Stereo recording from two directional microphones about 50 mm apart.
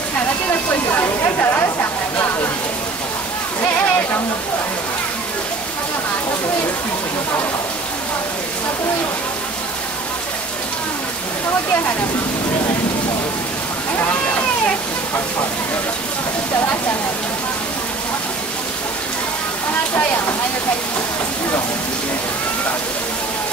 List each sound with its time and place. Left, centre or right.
0.5 s speech: left
1.0 s a sound: left
3.6 s speech: left